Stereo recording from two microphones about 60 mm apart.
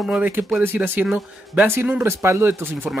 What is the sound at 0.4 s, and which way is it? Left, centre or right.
Speech, right.